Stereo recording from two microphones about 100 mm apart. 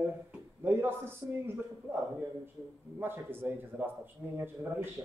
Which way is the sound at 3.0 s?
20° right (ahead or behind).